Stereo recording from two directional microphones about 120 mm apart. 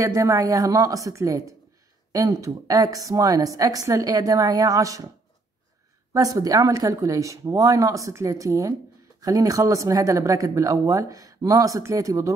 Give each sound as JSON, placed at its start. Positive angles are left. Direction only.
{"t": 0.0, "sound": "speech", "side_deg": -25}
{"t": 6.1, "sound": "speech", "side_deg": -30}